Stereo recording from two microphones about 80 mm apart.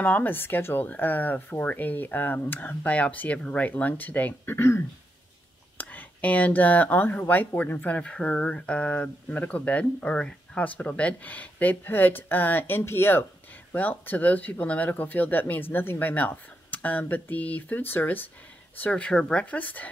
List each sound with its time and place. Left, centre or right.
0.0 s speech: left